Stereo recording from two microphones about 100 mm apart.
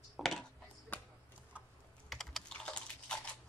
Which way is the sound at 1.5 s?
15° right (ahead or behind).